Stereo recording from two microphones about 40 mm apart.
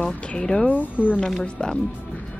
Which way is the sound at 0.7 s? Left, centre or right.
Left.